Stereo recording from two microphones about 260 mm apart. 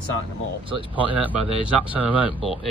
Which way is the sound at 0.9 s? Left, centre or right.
Centre.